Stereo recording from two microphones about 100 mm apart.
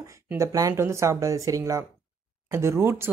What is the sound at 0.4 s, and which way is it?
Speech, 35° right (ahead or behind).